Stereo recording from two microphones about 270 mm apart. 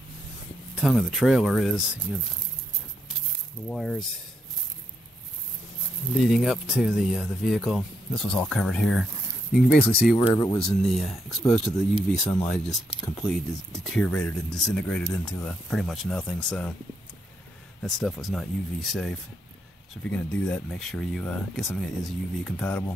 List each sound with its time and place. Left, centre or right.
0.7 s speech: centre
3.6 s speech: centre
6.1 s speech: centre
9.5 s speech: left
10.1 s speech: centre
10.6 s speech: centre
17.8 s speech: centre
20.2 s speech: centre